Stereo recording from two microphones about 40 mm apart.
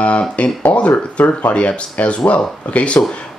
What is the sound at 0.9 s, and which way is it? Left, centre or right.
Speech, left.